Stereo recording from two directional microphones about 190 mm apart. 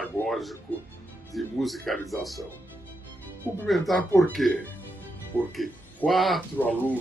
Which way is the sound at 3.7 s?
Centre (ahead or behind).